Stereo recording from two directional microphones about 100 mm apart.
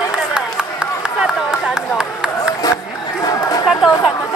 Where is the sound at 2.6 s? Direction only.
35° left (ahead or behind).